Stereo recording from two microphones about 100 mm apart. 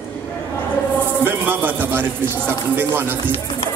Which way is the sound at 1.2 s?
20° right (ahead or behind).